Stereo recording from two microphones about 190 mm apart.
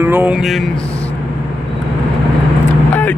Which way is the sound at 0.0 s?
10° right (ahead or behind).